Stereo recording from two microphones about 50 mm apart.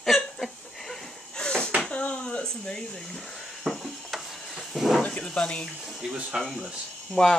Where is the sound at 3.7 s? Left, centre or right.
Centre.